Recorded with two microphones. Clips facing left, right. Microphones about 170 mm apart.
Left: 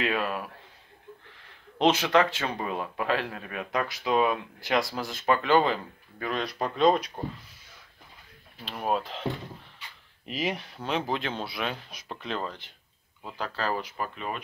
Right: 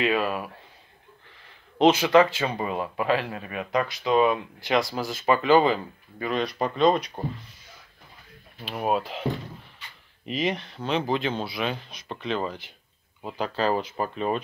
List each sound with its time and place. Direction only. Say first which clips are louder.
0.0 s speech: right 4 dB; 5° right (ahead or behind)
1.8 s speech: right 5 dB; centre (ahead or behind)
8.6 s speech: right 3 dB; 5° right (ahead or behind)
10.2 s speech: right 4 dB; 5° left (ahead or behind); by 14.4 s 35° right (ahead or behind)